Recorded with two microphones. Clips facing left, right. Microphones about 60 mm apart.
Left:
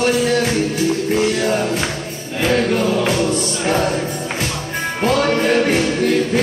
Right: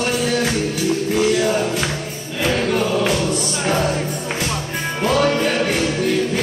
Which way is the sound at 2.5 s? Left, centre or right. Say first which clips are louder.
Left 2 dB; centre.